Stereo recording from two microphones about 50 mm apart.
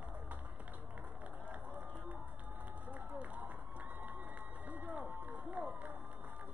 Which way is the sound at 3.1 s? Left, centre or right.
Right.